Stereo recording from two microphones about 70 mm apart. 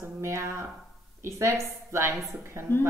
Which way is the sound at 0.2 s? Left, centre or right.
Right.